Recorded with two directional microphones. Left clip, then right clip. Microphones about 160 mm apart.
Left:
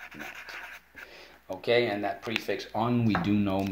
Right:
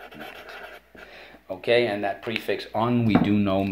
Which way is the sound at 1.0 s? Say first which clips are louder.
Right 4 dB; 30° left (ahead or behind).